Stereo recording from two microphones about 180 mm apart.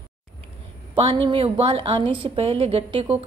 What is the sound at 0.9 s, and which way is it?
A woman's voice, 25° right (ahead or behind).